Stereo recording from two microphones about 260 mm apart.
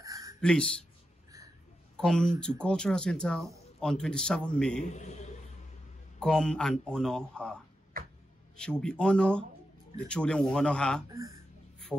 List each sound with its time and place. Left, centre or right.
0.0 s a sound: centre
0.4 s speech: centre
2.0 s speech: centre
4.8 s a man's voice: left
6.1 s speech: centre
11.9 s music: centre